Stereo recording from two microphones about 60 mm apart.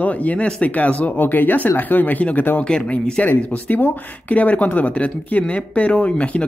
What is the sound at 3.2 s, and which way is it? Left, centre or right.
Speech, left.